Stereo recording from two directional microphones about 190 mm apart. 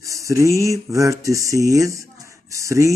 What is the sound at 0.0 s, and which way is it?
Speech, 15° right (ahead or behind).